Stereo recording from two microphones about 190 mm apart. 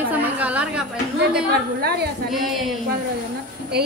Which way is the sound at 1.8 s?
60° right (ahead or behind).